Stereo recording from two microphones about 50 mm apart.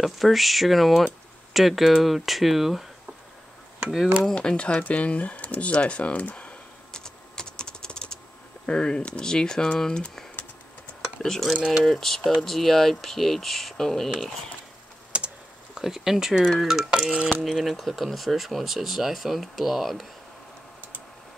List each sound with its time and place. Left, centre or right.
0.0 s speech: centre
4.4 s speech: centre
4.8 s typing: left
8.6 s speech: centre
11.2 s speech: centre
15.1 s typing: right
15.8 s speech: centre
16.9 s stir: centre
17.4 s speech: centre